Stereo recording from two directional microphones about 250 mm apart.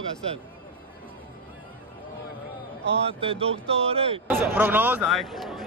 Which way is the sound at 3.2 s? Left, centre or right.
Right.